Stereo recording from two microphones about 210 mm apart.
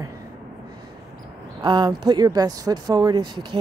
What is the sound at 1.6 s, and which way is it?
Speech, 20° right (ahead or behind).